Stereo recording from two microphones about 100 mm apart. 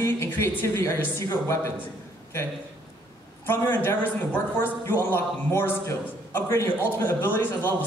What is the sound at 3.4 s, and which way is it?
A man's voice, 20° left (ahead or behind).